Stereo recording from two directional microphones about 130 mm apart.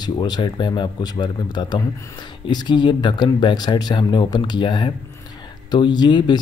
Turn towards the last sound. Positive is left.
turn(degrees=35)  # may be behind; listen again after turning